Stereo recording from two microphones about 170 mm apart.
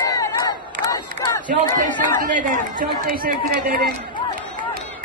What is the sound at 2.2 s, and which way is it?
Chatter, 50° right (ahead or behind).